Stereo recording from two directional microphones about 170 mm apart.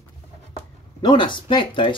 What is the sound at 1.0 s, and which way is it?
Speech, 30° left (ahead or behind).